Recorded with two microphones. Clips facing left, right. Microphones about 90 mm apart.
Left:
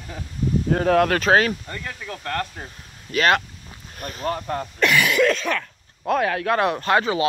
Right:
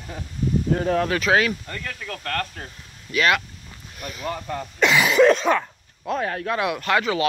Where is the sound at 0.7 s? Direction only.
70° left (ahead or behind).